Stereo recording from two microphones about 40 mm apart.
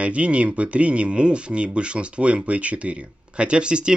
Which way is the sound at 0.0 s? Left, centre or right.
Right.